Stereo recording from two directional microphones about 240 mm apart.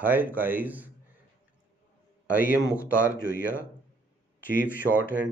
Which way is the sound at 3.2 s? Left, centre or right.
Left.